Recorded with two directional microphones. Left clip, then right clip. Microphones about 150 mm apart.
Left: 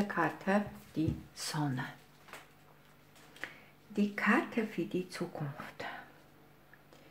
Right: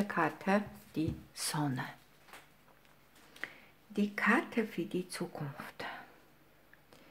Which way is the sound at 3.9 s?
25° right (ahead or behind).